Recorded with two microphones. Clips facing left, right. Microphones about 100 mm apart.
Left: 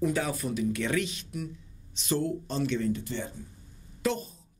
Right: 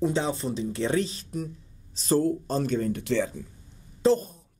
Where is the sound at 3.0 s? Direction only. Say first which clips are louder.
Right 10 dB; 90° right.